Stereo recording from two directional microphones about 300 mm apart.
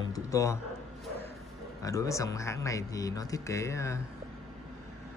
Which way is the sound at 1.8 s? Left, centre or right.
Centre.